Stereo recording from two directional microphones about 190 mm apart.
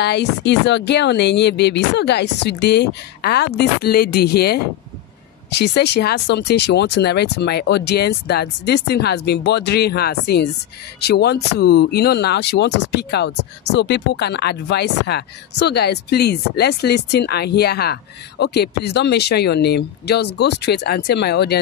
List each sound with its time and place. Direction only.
0.0 s speech: 60° left (ahead or behind)